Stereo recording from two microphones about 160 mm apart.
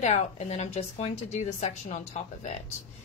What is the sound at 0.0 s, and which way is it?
Speech, 45° left (ahead or behind).